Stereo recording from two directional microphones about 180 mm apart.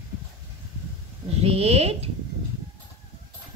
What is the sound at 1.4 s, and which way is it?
Speech, 35° right (ahead or behind).